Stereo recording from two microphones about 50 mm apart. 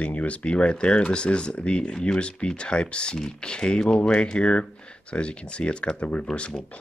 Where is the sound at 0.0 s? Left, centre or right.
Left.